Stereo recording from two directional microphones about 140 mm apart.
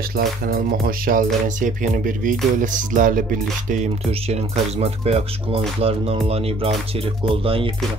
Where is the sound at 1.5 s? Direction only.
70° right (ahead or behind).